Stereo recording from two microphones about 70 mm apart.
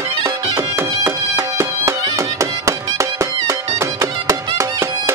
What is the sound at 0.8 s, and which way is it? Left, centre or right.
Music, right.